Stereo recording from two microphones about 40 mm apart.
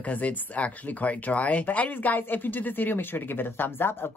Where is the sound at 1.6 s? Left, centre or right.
Left.